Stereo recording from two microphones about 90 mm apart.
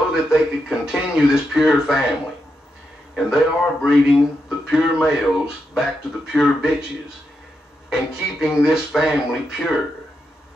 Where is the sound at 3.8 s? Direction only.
5° right (ahead or behind).